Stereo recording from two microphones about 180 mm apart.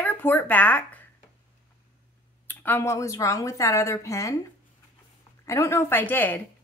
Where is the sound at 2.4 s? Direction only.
10° left (ahead or behind).